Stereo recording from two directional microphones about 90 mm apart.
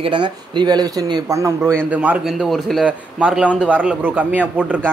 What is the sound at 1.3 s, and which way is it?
Speech, 35° right (ahead or behind).